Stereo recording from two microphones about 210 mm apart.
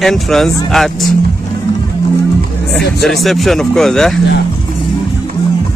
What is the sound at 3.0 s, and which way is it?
Speech, centre (ahead or behind).